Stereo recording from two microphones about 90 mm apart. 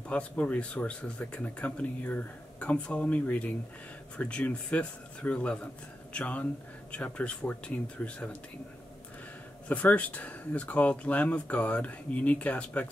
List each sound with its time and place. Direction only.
0.1 s speech: 15° left (ahead or behind)
9.7 s speech: 15° left (ahead or behind)